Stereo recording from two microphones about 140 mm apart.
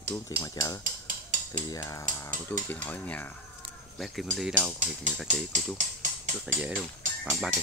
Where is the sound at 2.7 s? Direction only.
10° left (ahead or behind).